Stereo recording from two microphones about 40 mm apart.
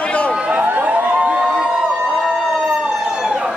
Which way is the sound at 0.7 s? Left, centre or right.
Right.